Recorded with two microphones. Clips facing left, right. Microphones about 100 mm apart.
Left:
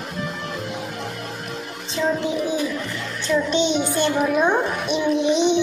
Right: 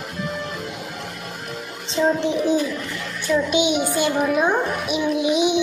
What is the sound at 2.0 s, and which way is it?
Speech, 15° right (ahead or behind).